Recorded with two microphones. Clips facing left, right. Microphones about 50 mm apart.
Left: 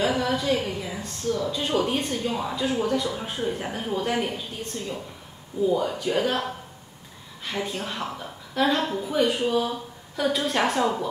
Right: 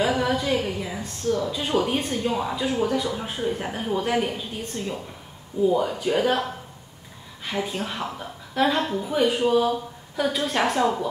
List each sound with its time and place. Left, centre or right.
0.0 s a woman's voice: centre
4.7 s speech: centre
5.9 s a woman's voice: centre